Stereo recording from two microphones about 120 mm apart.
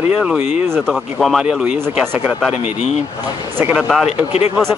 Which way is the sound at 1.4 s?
10° right (ahead or behind).